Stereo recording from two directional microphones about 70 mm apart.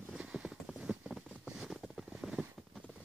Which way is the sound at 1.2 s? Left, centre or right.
Centre.